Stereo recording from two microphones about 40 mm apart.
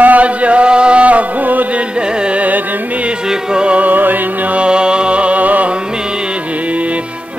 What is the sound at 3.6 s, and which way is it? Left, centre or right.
Music, right.